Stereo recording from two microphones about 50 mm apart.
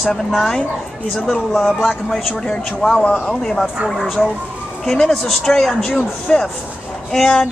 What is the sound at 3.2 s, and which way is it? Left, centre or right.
Speech, centre.